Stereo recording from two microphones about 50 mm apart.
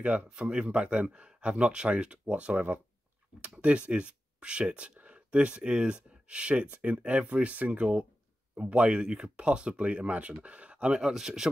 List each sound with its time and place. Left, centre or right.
0.0 s speech: right